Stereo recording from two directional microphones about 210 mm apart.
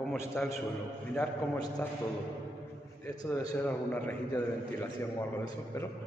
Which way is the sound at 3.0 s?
15° left (ahead or behind).